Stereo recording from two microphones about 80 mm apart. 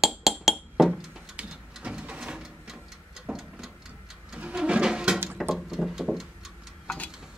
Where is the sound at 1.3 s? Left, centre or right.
Centre.